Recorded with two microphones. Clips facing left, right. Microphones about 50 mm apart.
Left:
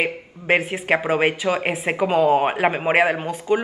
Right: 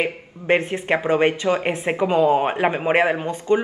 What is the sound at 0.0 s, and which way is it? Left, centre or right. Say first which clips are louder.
Speech: even; centre.